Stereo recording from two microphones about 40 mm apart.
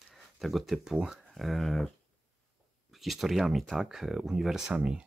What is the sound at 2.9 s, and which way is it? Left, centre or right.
Speech, centre.